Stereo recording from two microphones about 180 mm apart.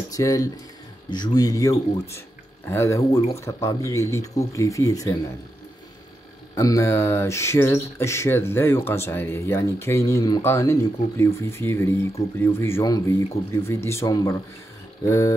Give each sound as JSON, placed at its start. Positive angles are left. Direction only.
{"t": 0.1, "sound": "speech", "side_deg": 20}
{"t": 6.5, "sound": "speech", "side_deg": 15}